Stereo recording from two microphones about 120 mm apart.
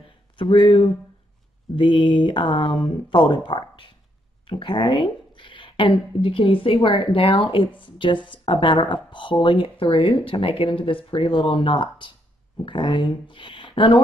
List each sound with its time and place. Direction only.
0.4 s a woman's voice: 45° left (ahead or behind)